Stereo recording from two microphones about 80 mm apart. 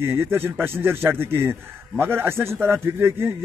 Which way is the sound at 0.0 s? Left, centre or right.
Right.